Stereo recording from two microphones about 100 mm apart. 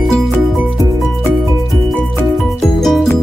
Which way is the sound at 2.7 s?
5° left (ahead or behind).